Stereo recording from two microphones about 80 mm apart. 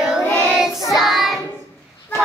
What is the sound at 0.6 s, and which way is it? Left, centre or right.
Child singing, left.